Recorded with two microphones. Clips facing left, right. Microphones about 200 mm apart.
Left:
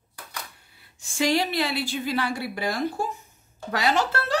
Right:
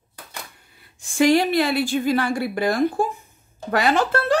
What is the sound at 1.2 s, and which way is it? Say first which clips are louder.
Speech: right 7 dB; 50° right (ahead or behind).